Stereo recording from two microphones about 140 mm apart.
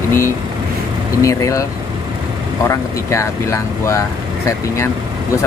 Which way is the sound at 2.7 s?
20° left (ahead or behind).